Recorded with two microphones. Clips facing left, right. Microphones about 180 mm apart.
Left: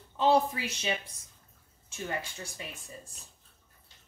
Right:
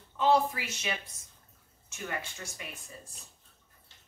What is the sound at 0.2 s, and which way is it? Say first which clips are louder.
Speech: left 1 dB; 30° left (ahead or behind).